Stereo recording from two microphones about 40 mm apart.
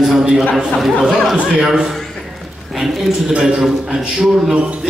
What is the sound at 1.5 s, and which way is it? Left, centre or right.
Speech, centre.